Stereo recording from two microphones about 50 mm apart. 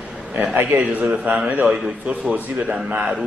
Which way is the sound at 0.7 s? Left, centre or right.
Right.